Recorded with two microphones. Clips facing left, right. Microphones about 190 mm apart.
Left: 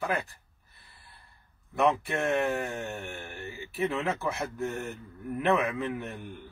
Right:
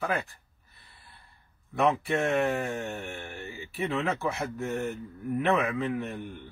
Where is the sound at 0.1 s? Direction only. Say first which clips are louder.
Even; centre (ahead or behind).